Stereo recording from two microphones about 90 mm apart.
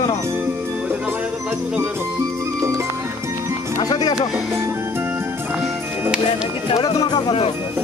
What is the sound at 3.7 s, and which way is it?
Speech, 45° left (ahead or behind).